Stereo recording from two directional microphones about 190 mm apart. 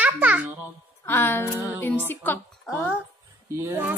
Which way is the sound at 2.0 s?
10° left (ahead or behind).